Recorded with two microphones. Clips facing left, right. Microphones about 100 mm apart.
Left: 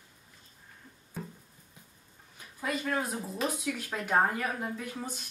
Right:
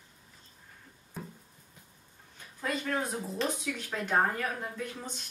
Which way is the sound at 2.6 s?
5° left (ahead or behind).